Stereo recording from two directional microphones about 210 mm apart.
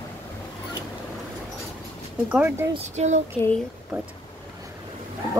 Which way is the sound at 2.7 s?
30° right (ahead or behind).